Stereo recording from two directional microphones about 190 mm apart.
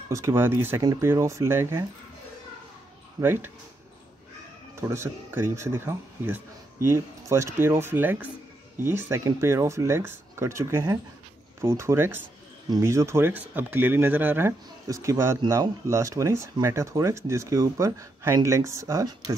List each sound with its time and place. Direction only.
0.1 s speech: 15° right (ahead or behind)
3.2 s speech: 10° right (ahead or behind)
4.7 s speech: 15° right (ahead or behind)